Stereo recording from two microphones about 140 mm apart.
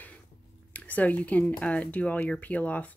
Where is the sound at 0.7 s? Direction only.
10° left (ahead or behind).